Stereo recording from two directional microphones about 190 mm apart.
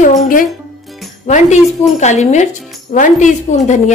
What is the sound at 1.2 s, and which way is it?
A woman's voice, 35° left (ahead or behind).